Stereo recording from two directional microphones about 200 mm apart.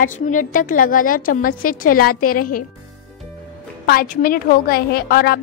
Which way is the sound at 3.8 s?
45° left (ahead or behind).